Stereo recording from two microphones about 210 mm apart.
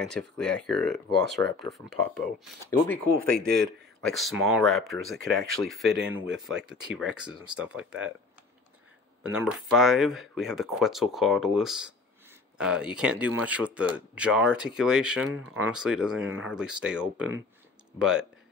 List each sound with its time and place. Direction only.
0.0 s speech: 5° left (ahead or behind)
3.2 s speech: 45° right (ahead or behind)
4.0 s speech: centre (ahead or behind)
9.2 s speech: 5° right (ahead or behind)